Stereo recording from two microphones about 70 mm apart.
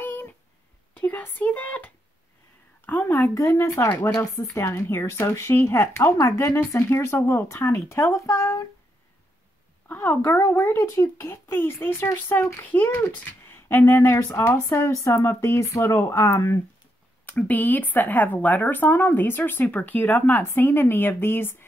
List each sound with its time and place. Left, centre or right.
0.0 s a sound: left
1.0 s speech: left
2.9 s speech: left
3.3 s speech: left
9.8 s speech: left
15.1 s speech: left
17.3 s speech: left